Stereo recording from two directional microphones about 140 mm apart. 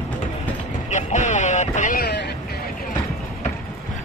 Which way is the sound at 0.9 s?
60° left (ahead or behind).